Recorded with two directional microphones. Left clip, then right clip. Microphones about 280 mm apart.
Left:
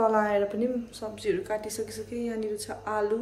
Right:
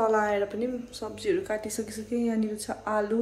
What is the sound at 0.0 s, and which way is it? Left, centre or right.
A woman's voice, centre.